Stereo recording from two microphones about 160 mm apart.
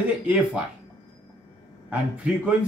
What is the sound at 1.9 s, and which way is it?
Speech, 5° right (ahead or behind).